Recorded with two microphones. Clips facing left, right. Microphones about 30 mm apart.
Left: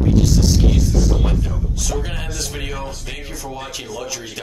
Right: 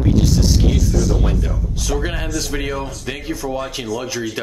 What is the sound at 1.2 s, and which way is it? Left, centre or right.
Speech, centre.